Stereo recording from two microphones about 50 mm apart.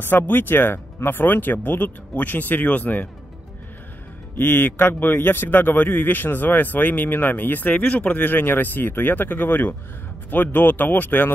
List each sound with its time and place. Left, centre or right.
0.0 s a man's voice: left
4.4 s a man's voice: left